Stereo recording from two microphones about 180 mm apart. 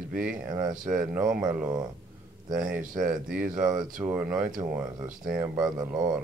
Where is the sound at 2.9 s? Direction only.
50° right (ahead or behind).